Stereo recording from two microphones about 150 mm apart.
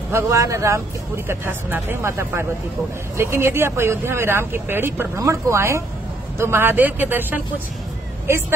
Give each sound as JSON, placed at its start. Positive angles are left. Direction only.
{"t": 0.1, "sound": "speech", "side_deg": -20}